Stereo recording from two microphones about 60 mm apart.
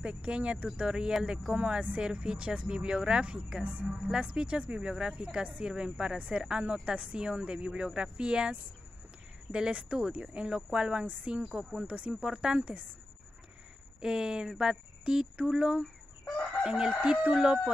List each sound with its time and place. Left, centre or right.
0.0 s speech: centre
14.0 s speech: centre